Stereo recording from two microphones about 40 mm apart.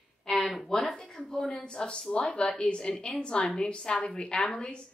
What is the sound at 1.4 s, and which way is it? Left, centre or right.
A woman's voice, left.